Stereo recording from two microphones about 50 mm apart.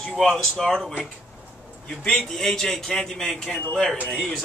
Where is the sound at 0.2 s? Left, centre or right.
Centre.